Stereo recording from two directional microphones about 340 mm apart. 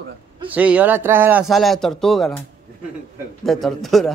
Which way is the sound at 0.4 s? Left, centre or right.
Centre.